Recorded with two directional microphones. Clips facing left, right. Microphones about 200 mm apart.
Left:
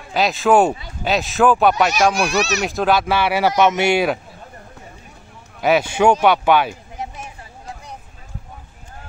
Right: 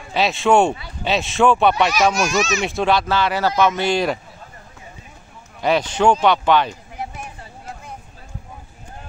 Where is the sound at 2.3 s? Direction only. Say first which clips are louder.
Even; 65° left (ahead or behind).